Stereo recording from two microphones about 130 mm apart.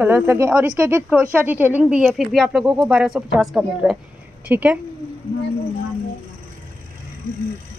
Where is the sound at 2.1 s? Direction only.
Centre (ahead or behind).